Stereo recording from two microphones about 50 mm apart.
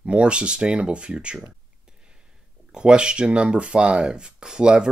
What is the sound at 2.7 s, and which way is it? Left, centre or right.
Speech, centre.